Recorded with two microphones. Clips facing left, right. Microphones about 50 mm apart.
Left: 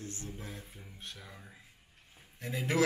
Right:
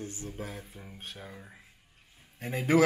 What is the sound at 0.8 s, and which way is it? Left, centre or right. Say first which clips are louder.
Speech: right 5 dB; right.